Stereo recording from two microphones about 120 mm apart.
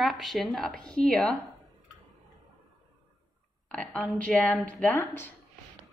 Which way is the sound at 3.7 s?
5° left (ahead or behind).